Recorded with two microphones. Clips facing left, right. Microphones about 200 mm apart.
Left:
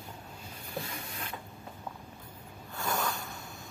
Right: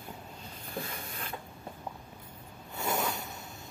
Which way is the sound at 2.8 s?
20° right (ahead or behind).